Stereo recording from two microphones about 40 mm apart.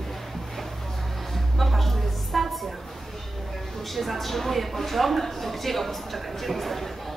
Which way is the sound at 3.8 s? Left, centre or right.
Centre.